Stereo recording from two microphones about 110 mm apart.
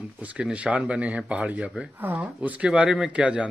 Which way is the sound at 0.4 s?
10° right (ahead or behind).